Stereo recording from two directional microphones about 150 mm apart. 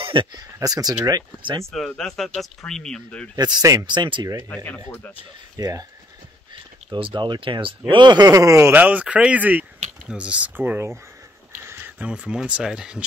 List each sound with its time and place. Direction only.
0.0 s speech: 35° right (ahead or behind)
1.7 s speech: 5° left (ahead or behind)
3.3 s speech: 25° right (ahead or behind)
4.6 s speech: 10° left (ahead or behind)
5.6 s speech: 25° right (ahead or behind)
6.9 s speech: 35° right (ahead or behind); by 13.0 s 5° right (ahead or behind)